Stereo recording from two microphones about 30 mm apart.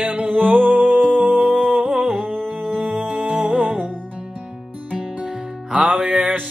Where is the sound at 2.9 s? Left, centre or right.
Right.